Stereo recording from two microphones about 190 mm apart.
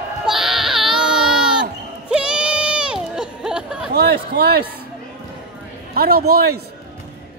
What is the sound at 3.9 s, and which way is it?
Speech, 55° right (ahead or behind).